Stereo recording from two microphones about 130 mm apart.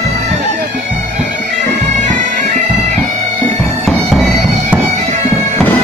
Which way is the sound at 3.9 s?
Centre (ahead or behind).